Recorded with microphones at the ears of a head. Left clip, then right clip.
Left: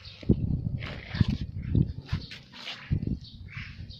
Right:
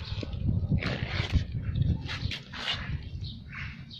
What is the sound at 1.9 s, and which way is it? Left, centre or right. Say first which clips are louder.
Dog: right 6 dB; right.